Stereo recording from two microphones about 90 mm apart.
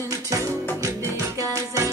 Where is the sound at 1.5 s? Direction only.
35° right (ahead or behind).